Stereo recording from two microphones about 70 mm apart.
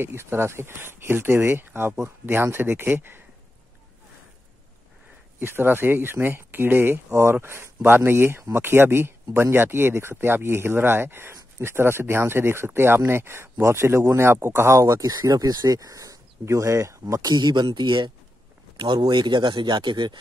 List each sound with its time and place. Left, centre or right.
0.0 s speech: right
5.4 s speech: right
15.0 s speech: right
17.3 s speech: right